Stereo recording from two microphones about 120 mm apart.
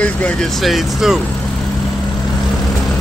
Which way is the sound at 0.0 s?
10° left (ahead or behind).